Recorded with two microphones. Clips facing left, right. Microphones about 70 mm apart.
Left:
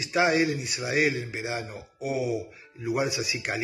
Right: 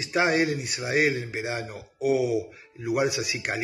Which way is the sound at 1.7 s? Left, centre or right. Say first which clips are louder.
Right 7 dB; right.